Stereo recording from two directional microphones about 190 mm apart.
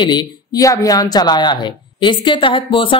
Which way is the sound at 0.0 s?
20° left (ahead or behind).